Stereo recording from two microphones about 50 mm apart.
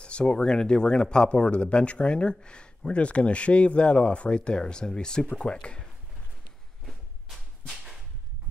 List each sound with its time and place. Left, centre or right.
0.0 s speech: left
6.9 s a sound: centre
7.7 s whip: centre